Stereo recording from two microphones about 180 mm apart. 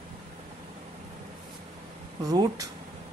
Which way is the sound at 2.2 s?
20° right (ahead or behind).